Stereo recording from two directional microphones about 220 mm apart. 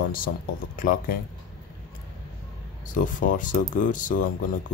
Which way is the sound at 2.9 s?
35° left (ahead or behind).